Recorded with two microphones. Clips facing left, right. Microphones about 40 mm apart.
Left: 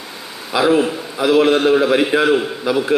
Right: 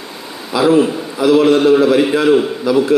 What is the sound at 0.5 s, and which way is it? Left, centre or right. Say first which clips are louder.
A man's voice: right 3 dB; centre.